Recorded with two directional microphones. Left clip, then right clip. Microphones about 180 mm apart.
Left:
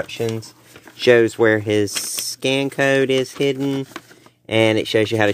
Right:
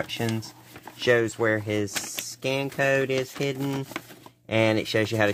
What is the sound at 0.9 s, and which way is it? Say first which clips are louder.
Speech: left 9 dB; 45° left (ahead or behind).